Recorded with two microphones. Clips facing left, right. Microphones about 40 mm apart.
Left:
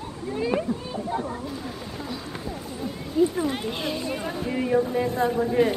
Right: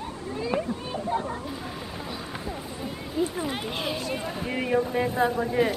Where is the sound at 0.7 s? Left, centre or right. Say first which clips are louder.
Left 3 dB; right.